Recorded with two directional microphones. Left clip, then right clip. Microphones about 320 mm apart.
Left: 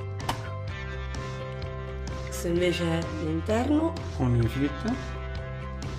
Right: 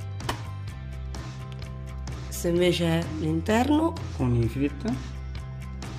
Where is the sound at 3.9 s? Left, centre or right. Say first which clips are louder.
Even; centre.